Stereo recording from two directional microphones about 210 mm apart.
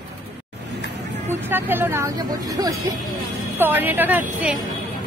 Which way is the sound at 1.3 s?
10° right (ahead or behind).